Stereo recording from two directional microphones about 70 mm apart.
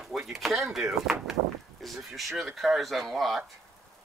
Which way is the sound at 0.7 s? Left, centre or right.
Centre.